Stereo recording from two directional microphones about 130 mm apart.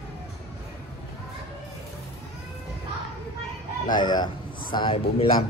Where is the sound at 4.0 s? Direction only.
30° left (ahead or behind).